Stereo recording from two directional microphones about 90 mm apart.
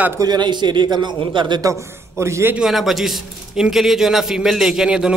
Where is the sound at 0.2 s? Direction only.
50° right (ahead or behind).